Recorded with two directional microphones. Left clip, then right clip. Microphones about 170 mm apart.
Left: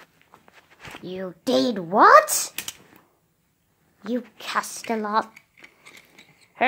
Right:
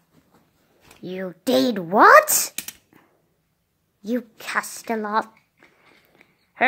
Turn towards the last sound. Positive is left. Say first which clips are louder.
# right 2 dB
turn(degrees=-5)  # may be behind; listen again after turning